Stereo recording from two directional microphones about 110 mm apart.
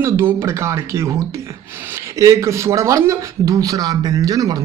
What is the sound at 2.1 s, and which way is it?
Speech, 30° right (ahead or behind).